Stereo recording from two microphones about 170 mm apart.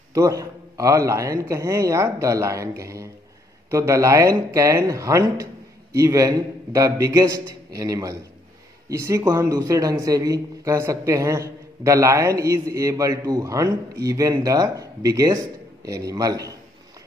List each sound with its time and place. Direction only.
0.1 s a man's voice: 20° right (ahead or behind)